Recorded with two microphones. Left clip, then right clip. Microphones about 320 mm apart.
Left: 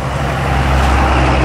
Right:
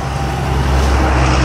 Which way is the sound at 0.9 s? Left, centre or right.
Left.